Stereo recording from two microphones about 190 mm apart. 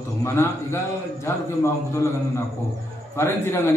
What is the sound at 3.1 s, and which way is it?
Speech, 15° left (ahead or behind).